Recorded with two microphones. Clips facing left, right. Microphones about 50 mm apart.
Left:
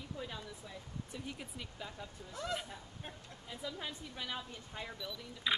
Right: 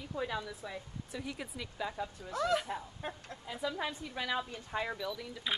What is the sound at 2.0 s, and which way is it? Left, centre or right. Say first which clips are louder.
A woman's voice: right 10 dB; right.